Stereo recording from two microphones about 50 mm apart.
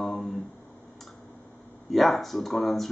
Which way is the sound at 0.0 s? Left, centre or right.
Centre.